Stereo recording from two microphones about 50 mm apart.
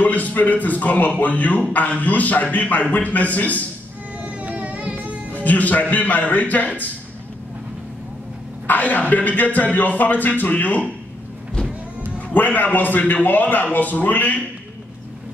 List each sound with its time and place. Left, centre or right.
0.0 s speech: left
4.2 s vehicle: right
5.3 s speech: left
8.6 s speech: left
12.3 s speech: left